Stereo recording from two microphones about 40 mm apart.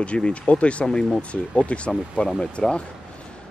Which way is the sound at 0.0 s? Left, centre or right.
Left.